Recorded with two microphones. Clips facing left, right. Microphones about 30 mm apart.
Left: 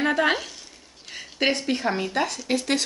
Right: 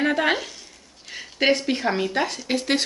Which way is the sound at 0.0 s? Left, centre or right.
Centre.